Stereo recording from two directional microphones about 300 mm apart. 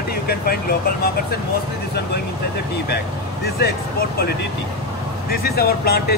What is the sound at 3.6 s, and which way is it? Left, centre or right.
Speech, left.